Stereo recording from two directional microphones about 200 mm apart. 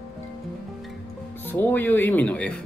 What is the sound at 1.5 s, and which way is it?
Speech, 10° left (ahead or behind).